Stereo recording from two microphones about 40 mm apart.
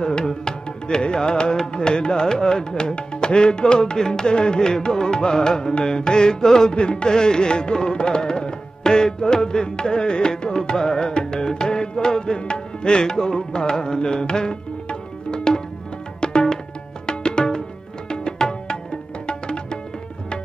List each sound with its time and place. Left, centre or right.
0.0 s music: centre